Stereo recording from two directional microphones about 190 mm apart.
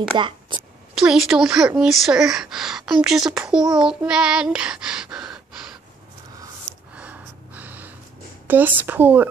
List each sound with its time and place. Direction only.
0.1 s a woman's voice: 25° right (ahead or behind)
0.9 s a woman's voice: 5° right (ahead or behind)
7.0 s gasp: 10° right (ahead or behind)
8.5 s speech: 10° right (ahead or behind)